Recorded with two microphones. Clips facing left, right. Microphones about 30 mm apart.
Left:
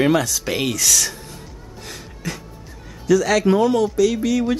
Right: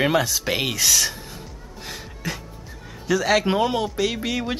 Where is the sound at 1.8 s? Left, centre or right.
Centre.